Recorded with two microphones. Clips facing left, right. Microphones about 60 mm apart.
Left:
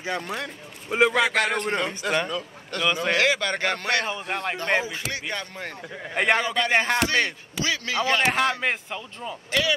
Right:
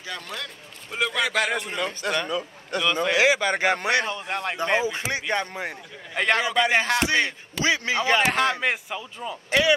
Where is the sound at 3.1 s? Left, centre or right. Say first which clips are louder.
Right 4 dB; centre.